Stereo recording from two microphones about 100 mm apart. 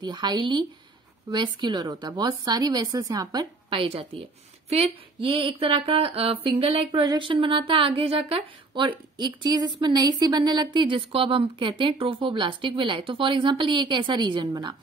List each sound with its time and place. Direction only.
0.0 s a woman's voice: 45° right (ahead or behind)
3.8 s speech: 70° right (ahead or behind)
6.9 s speech: 50° right (ahead or behind)